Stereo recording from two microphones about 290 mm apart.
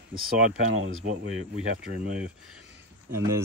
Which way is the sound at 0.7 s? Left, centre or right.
Right.